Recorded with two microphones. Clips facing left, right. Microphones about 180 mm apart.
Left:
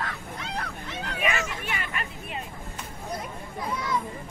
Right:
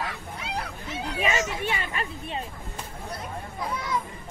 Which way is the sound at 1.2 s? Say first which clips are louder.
Right 3 dB; 25° right (ahead or behind).